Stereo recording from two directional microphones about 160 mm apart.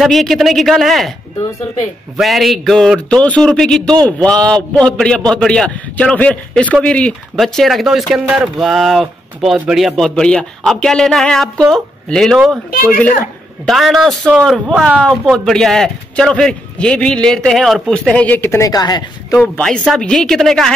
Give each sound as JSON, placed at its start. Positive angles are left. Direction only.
{"t": 0.0, "sound": "a man's voice", "side_deg": 0}
{"t": 2.1, "sound": "a man's voice", "side_deg": 0}
{"t": 13.7, "sound": "a man's voice", "side_deg": 0}
{"t": 19.3, "sound": "a man's voice", "side_deg": 10}